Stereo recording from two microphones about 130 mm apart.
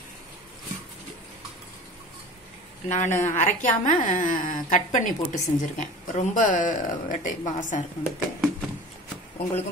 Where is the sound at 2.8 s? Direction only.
70° left (ahead or behind).